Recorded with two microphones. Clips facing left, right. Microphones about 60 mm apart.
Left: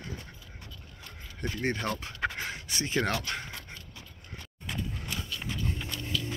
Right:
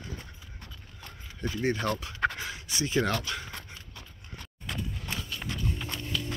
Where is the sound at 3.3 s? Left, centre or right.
Left.